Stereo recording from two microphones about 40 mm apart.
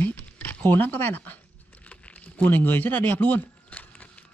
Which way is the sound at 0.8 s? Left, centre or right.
Left.